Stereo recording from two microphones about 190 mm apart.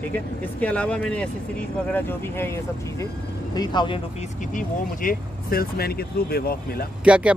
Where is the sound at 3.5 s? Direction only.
20° left (ahead or behind).